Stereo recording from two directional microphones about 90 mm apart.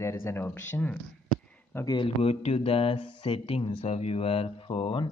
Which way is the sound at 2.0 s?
90° left.